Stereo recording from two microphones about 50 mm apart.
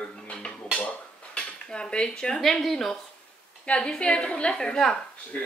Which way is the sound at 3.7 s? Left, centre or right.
Centre.